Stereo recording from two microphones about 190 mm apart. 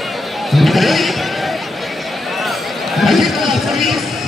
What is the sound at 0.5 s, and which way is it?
Speech, centre (ahead or behind).